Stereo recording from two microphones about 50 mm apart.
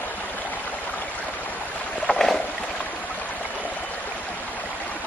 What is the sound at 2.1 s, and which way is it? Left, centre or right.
Boat, left.